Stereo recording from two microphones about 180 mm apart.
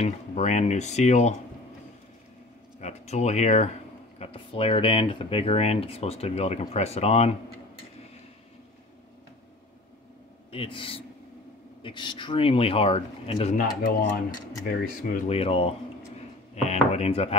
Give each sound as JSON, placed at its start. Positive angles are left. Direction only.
{"t": 0.0, "sound": "speech", "side_deg": 40}
{"t": 2.8, "sound": "speech", "side_deg": 40}
{"t": 10.5, "sound": "speech", "side_deg": 30}
{"t": 13.6, "sound": "speech", "side_deg": 50}
{"t": 15.1, "sound": "speech", "side_deg": 35}